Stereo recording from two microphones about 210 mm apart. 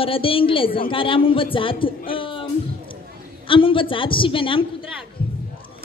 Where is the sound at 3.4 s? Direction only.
25° left (ahead or behind).